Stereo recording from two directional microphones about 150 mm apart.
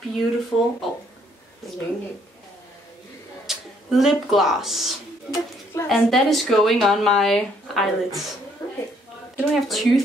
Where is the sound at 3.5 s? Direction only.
Centre (ahead or behind).